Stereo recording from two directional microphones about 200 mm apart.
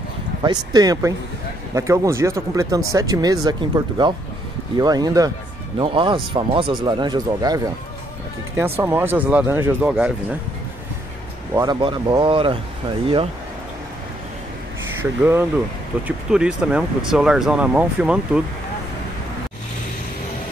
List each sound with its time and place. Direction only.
0.4 s speech: 20° right (ahead or behind)
8.7 s speech: 10° right (ahead or behind)
11.5 s speech: 20° right (ahead or behind)
15.0 s speech: 10° right (ahead or behind)